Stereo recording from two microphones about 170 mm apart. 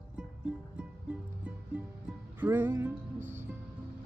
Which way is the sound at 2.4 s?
10° right (ahead or behind).